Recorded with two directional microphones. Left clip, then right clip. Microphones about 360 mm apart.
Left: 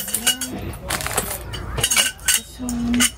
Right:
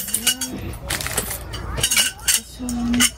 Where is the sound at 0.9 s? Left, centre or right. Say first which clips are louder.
Left 1 dB; centre.